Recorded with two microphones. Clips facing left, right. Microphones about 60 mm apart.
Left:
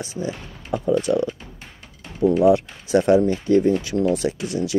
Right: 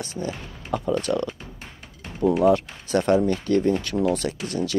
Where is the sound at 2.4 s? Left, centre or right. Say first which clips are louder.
Left 3 dB; centre.